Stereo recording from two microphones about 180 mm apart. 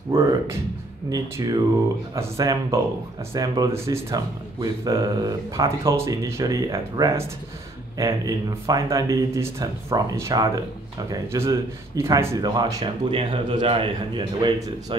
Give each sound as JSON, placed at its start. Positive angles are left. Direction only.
{"t": 0.1, "sound": "speech", "side_deg": -20}